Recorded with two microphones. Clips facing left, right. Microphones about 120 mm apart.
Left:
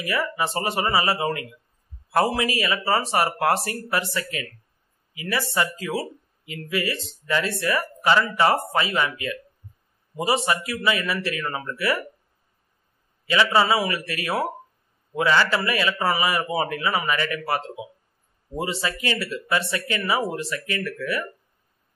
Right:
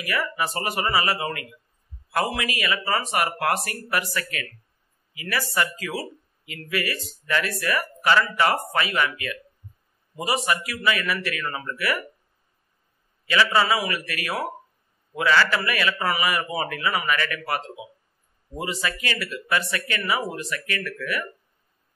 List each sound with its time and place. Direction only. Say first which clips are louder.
0.0 s a man's voice: left 1 dB; 25° left (ahead or behind)
13.3 s a man's voice: left 1 dB; 25° left (ahead or behind)